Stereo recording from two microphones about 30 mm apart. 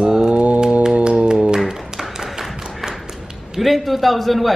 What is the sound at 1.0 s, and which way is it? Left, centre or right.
Music, right.